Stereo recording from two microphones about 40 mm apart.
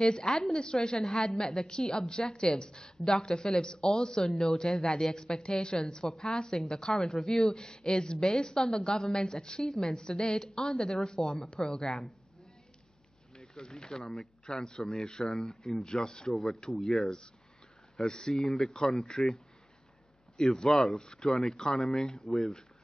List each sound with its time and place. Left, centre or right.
0.1 s a woman's voice: centre
7.2 s speech: centre
7.5 s a woman's voice: centre
13.4 s a woman's voice: centre
17.0 s a woman's voice: centre
20.5 s a woman's voice: centre